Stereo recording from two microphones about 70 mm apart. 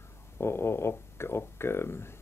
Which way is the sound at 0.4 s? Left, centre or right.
Left.